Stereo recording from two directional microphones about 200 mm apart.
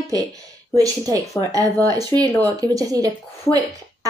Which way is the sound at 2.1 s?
10° left (ahead or behind).